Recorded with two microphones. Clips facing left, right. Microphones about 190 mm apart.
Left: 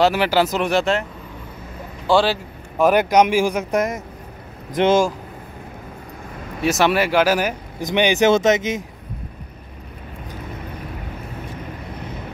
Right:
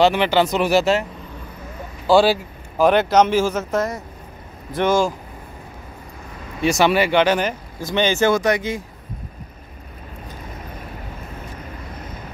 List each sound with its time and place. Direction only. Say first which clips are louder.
0.0 s speech: right 1 dB; 5° left (ahead or behind)
2.0 s speech: right 3 dB; 10° right (ahead or behind)
2.8 s speech: even; 10° left (ahead or behind)
6.6 s speech: right 1 dB; centre (ahead or behind); by 8.8 s 20° left (ahead or behind)